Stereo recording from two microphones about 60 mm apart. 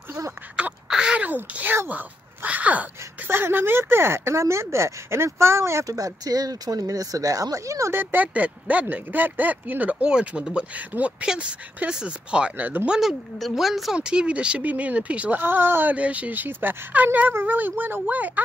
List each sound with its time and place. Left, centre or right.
0.8 s a sound: centre
1.2 s a sound: right
3.3 s speech: right
5.9 s speech: right
7.9 s speech: right
8.3 s speech: right
13.4 s speech: centre
13.9 s speech: centre
15.4 s speech: right